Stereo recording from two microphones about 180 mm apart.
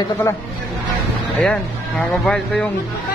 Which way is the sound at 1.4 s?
5° left (ahead or behind).